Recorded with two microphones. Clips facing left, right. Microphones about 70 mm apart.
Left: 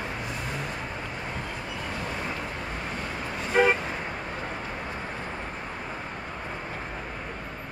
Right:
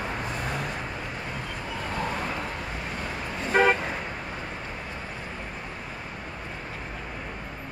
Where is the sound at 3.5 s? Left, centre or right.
Right.